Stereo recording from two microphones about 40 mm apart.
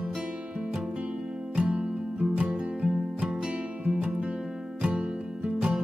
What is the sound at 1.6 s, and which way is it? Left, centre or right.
Music, right.